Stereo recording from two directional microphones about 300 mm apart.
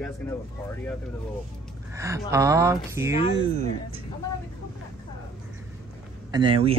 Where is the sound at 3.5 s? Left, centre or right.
Right.